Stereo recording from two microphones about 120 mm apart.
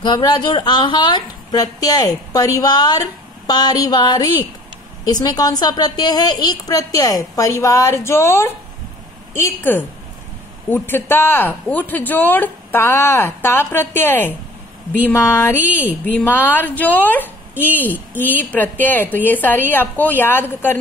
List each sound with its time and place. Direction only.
0.0 s a woman's voice: 35° left (ahead or behind); by 20.7 s 15° left (ahead or behind)